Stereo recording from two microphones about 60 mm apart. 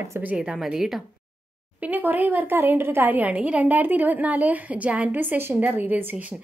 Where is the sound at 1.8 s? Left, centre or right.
Right.